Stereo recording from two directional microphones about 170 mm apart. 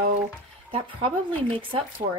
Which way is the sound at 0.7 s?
35° right (ahead or behind).